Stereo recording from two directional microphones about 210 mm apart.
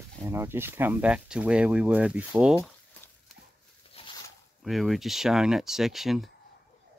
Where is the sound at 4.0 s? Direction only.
30° left (ahead or behind).